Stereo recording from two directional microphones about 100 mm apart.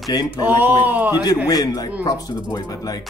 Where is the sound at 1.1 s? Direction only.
40° left (ahead or behind).